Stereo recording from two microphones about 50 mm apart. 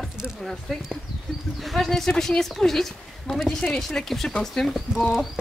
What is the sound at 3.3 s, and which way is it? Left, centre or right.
Speech, centre.